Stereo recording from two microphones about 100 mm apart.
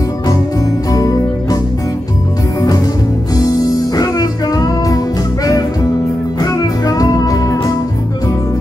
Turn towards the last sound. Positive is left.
turn(degrees=35)  # may be behind; listen again after turning